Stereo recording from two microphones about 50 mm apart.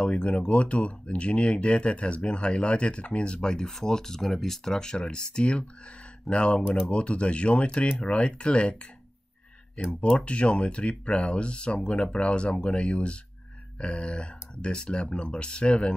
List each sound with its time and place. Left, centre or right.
0.0 s speech: left
9.9 s speech: left